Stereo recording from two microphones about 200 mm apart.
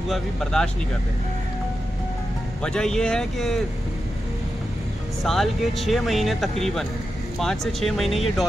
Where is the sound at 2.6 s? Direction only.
5° left (ahead or behind).